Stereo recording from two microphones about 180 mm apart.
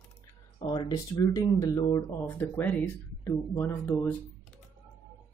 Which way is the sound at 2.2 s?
10° left (ahead or behind).